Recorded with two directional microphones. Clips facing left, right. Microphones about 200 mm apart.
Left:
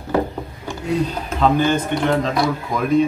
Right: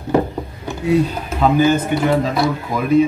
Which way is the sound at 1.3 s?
5° right (ahead or behind).